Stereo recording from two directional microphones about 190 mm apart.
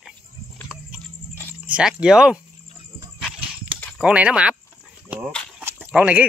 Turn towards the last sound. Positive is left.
turn(degrees=-5)  # may be behind; listen again after turning